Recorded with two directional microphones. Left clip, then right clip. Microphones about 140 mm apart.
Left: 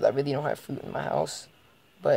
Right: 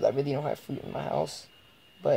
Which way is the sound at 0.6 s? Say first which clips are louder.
Left 1 dB; 20° left (ahead or behind).